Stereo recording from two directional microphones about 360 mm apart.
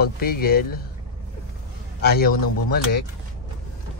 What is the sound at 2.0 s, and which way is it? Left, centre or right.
Speech, left.